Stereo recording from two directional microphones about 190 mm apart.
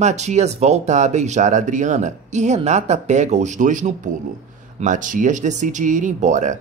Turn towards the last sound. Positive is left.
turn(degrees=-40)  # may be behind; listen again after turning